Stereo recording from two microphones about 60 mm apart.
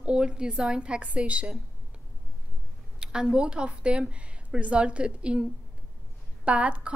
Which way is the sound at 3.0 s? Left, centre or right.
Centre.